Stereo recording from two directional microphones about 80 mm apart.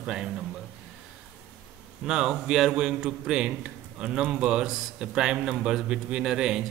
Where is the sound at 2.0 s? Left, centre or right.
Centre.